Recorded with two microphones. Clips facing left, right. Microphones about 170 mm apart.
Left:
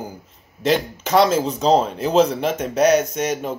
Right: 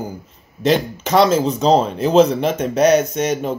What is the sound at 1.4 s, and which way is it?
Speech, 20° right (ahead or behind).